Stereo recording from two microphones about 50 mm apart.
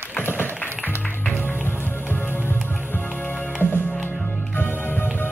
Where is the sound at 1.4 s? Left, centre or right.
Left.